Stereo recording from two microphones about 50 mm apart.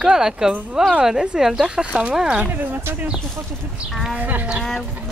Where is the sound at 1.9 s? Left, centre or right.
Right.